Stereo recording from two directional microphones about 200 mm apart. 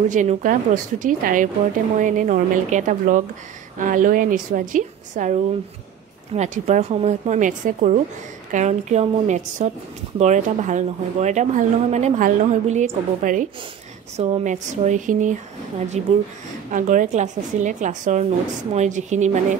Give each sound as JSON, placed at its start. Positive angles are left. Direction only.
{"t": 0.1, "sound": "speech", "side_deg": -40}